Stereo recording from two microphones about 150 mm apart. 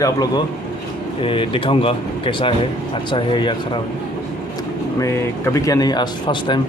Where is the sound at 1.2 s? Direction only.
35° left (ahead or behind).